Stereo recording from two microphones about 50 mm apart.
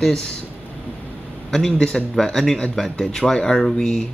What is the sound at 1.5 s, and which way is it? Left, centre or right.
Speech, centre.